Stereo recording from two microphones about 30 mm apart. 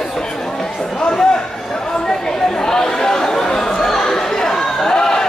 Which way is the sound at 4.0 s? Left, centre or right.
Centre.